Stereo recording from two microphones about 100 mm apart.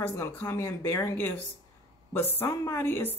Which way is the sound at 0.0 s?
25° left (ahead or behind).